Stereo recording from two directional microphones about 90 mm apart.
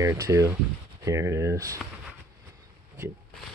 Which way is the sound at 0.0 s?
35° right (ahead or behind).